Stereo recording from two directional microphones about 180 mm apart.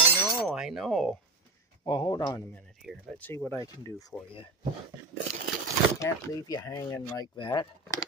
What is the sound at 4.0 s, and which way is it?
Speech, 25° left (ahead or behind).